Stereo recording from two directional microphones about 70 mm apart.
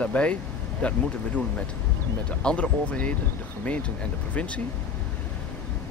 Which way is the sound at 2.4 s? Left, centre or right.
Centre.